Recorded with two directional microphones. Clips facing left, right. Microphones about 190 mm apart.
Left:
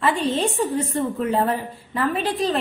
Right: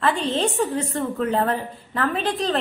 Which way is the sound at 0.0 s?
10° left (ahead or behind).